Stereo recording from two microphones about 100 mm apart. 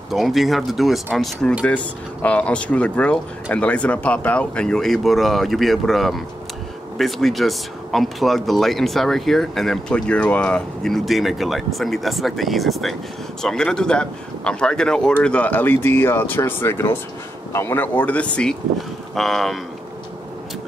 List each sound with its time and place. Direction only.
0.1 s speech: centre (ahead or behind)
2.2 s a man's voice: 10° left (ahead or behind)